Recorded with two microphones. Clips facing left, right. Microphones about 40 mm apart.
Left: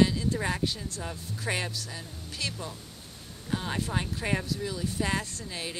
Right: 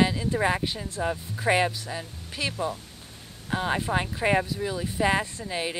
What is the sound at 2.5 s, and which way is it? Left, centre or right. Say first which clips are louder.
Speech: right 9 dB; right.